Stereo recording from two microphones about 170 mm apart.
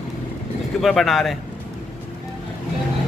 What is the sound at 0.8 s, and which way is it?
Speech, centre (ahead or behind).